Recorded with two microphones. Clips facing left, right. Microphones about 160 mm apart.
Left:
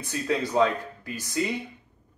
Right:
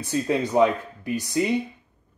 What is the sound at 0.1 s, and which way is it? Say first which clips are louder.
Speech: right 4 dB; 15° right (ahead or behind).